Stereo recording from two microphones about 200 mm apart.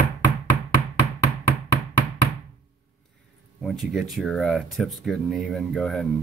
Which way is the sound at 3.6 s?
Centre (ahead or behind).